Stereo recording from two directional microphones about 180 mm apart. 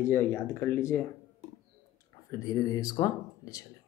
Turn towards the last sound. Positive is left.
turn(degrees=20)  # may be behind; listen again after turning